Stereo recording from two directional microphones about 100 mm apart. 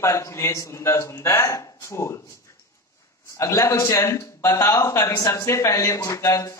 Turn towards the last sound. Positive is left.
turn(degrees=30)  # may be behind; listen again after turning